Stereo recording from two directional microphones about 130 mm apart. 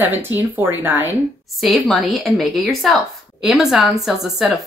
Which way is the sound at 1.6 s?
Centre (ahead or behind).